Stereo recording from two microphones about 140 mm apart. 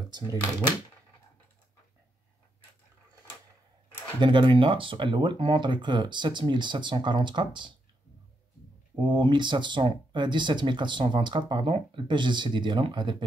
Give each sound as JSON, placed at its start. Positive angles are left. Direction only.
{"t": 4.2, "sound": "speech", "side_deg": -35}
{"t": 9.0, "sound": "speech", "side_deg": -35}